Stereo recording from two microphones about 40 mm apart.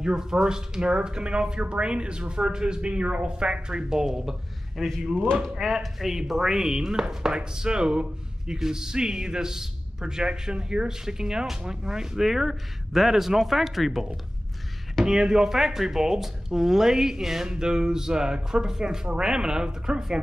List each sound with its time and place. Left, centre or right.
0.0 s speech: centre
4.7 s a man's voice: centre
15.0 s a man's voice: centre